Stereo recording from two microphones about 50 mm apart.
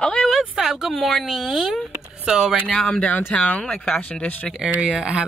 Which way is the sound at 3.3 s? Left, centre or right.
Left.